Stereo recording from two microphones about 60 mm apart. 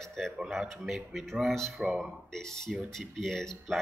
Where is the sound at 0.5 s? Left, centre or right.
Centre.